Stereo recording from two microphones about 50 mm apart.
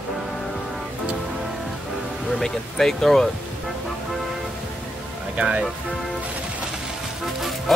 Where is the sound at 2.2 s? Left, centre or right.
Centre.